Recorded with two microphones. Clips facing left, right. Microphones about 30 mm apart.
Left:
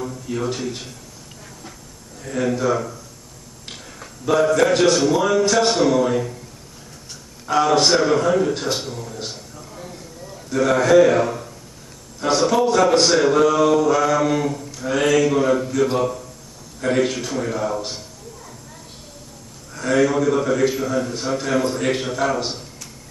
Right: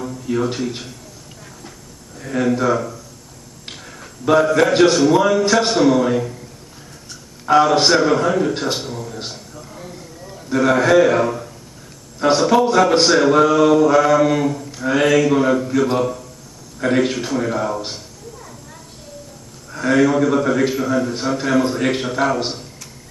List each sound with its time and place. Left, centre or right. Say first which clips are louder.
0.0 s a man's voice: right 4 dB; centre
2.2 s a man's voice: right 3 dB; centre
4.3 s a man's voice: right 2 dB; centre
7.4 s a man's voice: right 3 dB; centre
9.3 s a sound: right 1 dB; centre
12.4 s a man's voice: right 1 dB; centre
19.7 s a man's voice: right 3 dB; centre